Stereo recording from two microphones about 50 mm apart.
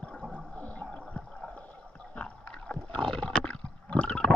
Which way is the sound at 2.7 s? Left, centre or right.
Left.